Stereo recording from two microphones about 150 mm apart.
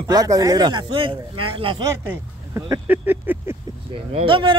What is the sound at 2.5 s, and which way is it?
Speech, 15° right (ahead or behind).